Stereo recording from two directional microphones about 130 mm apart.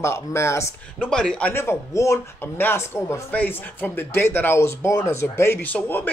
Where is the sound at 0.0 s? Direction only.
20° left (ahead or behind).